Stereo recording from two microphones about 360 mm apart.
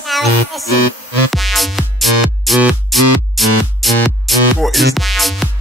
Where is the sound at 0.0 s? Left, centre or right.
Centre.